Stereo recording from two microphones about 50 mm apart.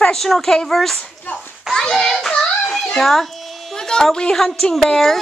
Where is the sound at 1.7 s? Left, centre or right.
Centre.